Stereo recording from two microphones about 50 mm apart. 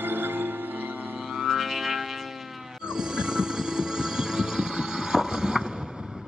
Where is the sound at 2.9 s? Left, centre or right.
Centre.